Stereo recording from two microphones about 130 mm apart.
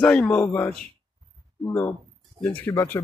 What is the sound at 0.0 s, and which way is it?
Speech, 10° left (ahead or behind).